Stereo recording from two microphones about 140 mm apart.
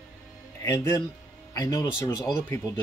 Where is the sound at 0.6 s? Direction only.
20° left (ahead or behind).